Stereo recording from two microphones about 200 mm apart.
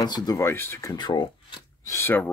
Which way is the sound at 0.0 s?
20° left (ahead or behind).